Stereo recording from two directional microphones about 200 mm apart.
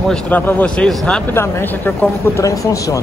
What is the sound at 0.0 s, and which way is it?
Speech, 5° left (ahead or behind).